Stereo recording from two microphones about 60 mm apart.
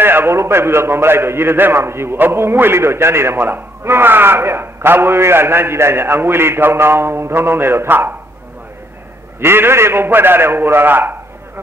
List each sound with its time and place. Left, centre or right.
0.0 s a man's voice: right
9.4 s a man's voice: right